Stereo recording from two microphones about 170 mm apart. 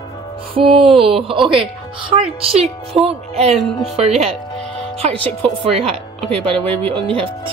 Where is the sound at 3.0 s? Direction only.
35° right (ahead or behind).